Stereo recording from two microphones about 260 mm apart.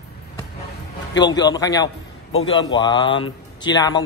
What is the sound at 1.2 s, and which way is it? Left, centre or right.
A man's voice, centre.